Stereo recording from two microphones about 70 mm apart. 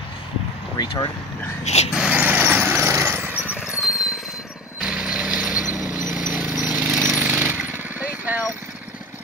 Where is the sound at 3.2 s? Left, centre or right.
Right.